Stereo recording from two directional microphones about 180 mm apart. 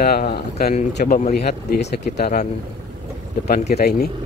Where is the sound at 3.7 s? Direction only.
60° left (ahead or behind).